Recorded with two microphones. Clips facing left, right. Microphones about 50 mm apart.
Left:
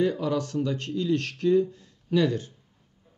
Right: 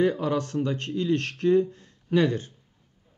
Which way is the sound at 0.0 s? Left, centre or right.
Right.